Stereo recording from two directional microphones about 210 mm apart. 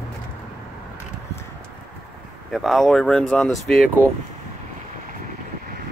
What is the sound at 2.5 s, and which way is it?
Speech, centre (ahead or behind).